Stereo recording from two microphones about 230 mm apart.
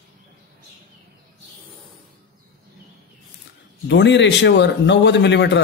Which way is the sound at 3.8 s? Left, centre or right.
Left.